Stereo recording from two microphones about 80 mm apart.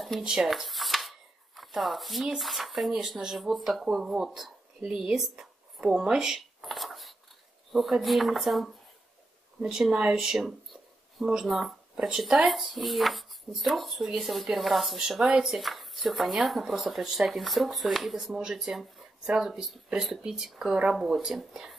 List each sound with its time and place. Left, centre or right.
0.2 s speech: centre
5.8 s dishes: centre
7.7 s speech: centre
15.4 s speech: centre